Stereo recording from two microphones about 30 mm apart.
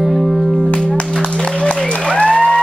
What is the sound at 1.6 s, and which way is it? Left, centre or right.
Applause, left.